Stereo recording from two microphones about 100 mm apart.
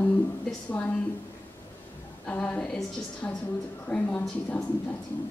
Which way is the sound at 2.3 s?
15° left (ahead or behind).